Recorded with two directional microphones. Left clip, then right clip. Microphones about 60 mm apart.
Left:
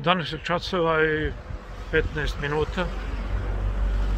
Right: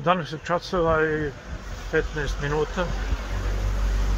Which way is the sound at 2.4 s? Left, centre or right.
Left.